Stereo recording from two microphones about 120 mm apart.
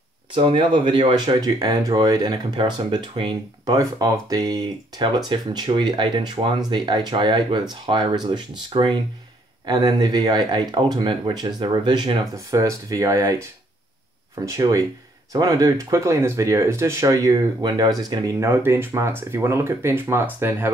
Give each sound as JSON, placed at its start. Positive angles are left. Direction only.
{"t": 0.3, "sound": "speech", "side_deg": -45}
{"t": 3.7, "sound": "speech", "side_deg": -30}
{"t": 18.5, "sound": "speech", "side_deg": -20}